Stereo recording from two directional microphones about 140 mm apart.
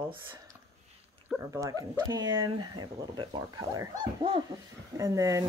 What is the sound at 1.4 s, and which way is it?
Speech, 25° right (ahead or behind).